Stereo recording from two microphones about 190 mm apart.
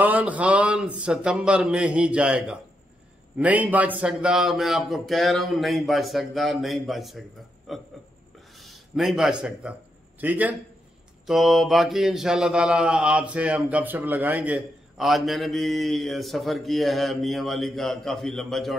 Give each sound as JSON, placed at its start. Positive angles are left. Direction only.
{"t": 0.0, "sound": "a man's voice", "side_deg": -10}